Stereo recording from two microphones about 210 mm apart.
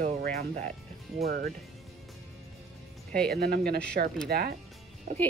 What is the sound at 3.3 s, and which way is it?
Speech, 50° right (ahead or behind).